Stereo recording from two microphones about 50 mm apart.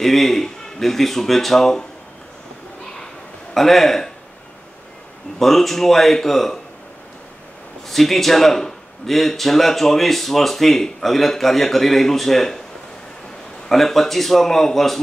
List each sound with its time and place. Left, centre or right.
0.0 s a man's voice: centre
3.5 s a man's voice: centre
5.4 s a man's voice: centre
7.9 s a man's voice: centre
13.7 s a man's voice: centre